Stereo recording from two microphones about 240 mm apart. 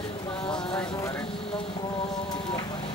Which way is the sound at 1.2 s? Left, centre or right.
Left.